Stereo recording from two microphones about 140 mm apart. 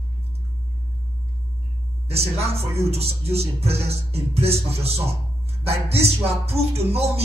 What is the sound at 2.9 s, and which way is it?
Music, 45° right (ahead or behind).